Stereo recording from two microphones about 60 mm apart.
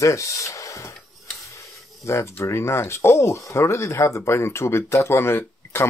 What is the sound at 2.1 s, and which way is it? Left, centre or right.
Speech, left.